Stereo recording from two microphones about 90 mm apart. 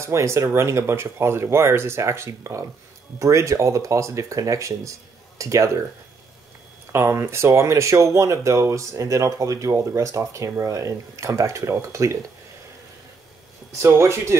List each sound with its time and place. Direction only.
0.0 s speech: 30° right (ahead or behind)
6.9 s speech: 30° right (ahead or behind)
13.7 s speech: 30° right (ahead or behind)